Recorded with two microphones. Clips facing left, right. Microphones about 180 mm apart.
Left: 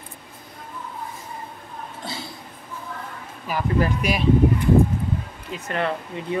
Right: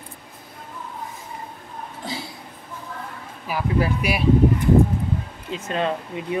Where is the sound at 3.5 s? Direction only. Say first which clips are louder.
Even; 10° right (ahead or behind).